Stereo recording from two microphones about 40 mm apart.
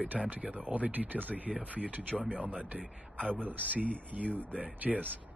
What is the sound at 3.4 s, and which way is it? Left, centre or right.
Speech, right.